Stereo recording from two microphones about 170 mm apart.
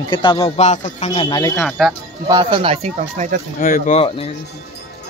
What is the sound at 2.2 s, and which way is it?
Speech, 25° right (ahead or behind).